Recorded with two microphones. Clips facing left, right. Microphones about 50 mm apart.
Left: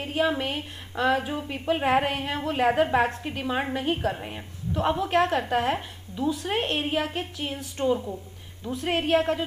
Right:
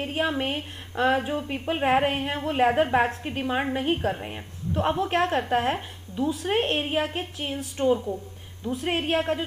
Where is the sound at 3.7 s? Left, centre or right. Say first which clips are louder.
Right 1 dB; centre.